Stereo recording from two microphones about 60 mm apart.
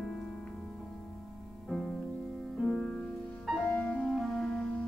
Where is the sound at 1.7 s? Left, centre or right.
Centre.